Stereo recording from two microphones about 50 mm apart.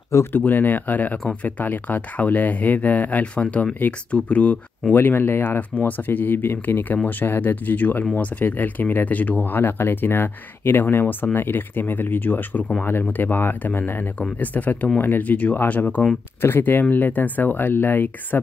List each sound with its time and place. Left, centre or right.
0.4 s speech: left
4.9 s speech: left
8.0 s speech: left
8.4 s speech: left
14.4 s speech: left
15.2 s speech: left
16.3 s speech: left